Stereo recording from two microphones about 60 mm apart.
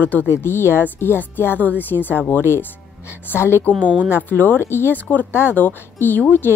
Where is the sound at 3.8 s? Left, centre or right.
Right.